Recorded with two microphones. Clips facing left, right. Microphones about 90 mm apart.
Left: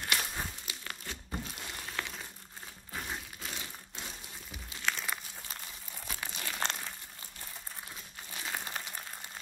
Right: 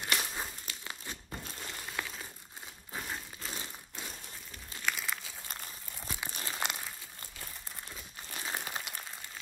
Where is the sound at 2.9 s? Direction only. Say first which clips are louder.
Even; centre (ahead or behind).